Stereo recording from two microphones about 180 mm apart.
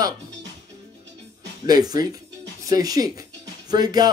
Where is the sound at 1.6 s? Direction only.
20° right (ahead or behind).